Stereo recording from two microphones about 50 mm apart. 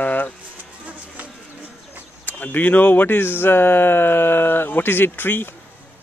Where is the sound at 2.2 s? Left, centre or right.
Left.